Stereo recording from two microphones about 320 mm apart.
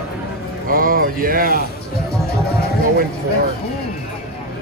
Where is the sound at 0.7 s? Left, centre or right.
Right.